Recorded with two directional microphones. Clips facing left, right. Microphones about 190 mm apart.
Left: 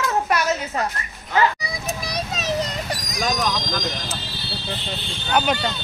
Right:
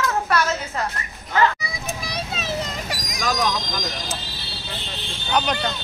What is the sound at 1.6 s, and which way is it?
Vehicle, 40° left (ahead or behind).